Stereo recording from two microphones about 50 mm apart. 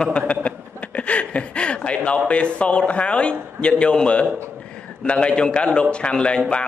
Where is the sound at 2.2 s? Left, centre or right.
Left.